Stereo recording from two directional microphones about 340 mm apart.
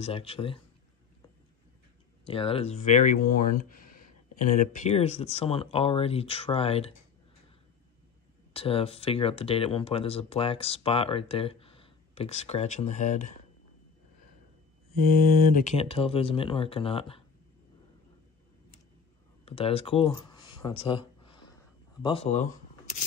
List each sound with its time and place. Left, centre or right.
0.0 s speech: centre
2.2 s speech: centre
8.5 s speech: centre
15.5 s speech: centre
19.4 s speech: centre
22.0 s speech: centre